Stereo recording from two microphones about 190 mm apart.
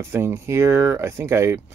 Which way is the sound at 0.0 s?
15° right (ahead or behind).